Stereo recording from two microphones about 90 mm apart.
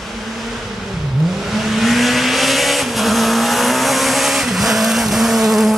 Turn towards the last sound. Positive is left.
turn(degrees=0)  # may be behind; listen again after turning